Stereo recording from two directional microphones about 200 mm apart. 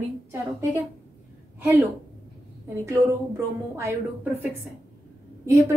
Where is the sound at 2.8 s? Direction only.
15° right (ahead or behind).